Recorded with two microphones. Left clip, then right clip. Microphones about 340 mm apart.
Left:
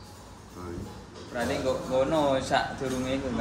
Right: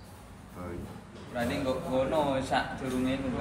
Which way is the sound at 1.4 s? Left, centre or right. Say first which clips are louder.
Left 2 dB; left.